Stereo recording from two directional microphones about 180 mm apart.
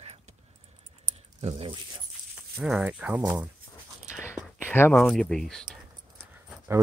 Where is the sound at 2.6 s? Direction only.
5° right (ahead or behind).